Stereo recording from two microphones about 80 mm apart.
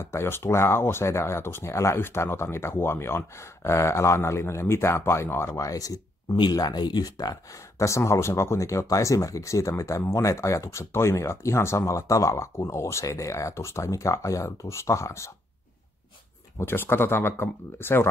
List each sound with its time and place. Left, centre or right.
0.0 s speech: left
5.6 s speech: left
7.8 s speech: left
16.5 s speech: left